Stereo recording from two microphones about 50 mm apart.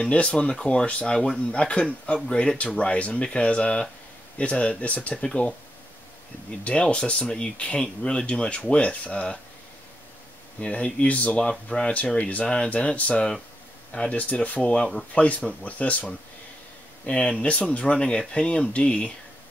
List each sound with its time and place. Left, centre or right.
0.0 s speech: left
6.6 s speech: left
10.6 s speech: left
14.6 s speech: centre